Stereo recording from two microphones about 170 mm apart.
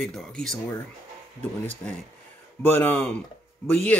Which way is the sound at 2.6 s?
10° left (ahead or behind).